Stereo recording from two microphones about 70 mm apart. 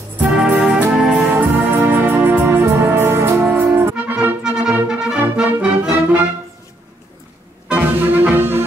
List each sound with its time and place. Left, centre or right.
0.2 s music: right
3.4 s brass instrument: right
3.9 s music: centre
4.4 s music: centre
5.2 s brass instrument: centre
7.7 s music: right